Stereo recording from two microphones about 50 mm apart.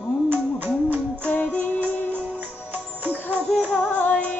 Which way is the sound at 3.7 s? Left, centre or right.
Left.